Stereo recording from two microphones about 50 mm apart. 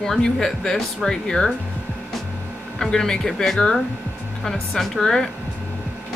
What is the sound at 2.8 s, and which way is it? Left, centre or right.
Speech, centre.